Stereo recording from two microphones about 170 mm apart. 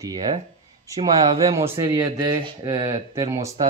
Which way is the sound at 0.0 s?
25° right (ahead or behind).